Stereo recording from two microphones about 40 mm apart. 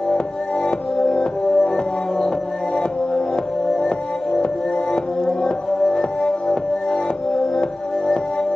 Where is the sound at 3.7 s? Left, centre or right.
Centre.